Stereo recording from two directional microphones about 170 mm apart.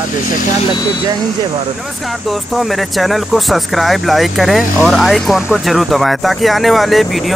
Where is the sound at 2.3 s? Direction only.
Centre (ahead or behind).